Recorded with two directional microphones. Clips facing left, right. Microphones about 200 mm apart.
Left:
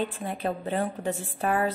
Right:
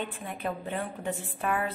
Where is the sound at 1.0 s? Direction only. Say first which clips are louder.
Left 3 dB; 85° left.